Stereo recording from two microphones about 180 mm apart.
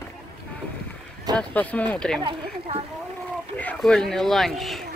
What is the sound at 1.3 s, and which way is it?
Speech, 10° left (ahead or behind).